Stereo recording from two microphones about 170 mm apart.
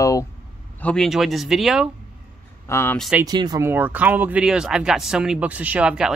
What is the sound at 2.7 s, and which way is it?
Speech, 10° left (ahead or behind).